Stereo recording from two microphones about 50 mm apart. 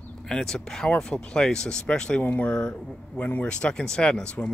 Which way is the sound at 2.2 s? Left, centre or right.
Left.